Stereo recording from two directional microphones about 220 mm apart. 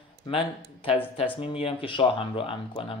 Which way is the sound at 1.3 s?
25° left (ahead or behind).